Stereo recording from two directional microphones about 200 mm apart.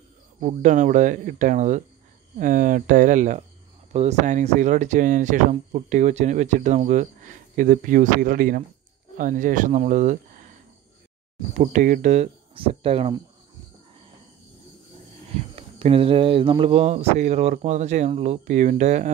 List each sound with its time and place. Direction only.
0.4 s speech: 35° right (ahead or behind)
11.5 s speech: 40° right (ahead or behind)
15.5 s speech: 30° right (ahead or behind)